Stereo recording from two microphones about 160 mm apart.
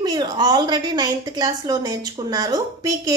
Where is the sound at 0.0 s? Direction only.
25° right (ahead or behind).